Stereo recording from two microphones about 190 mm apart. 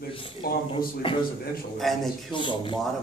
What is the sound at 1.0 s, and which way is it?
Speech, 25° left (ahead or behind).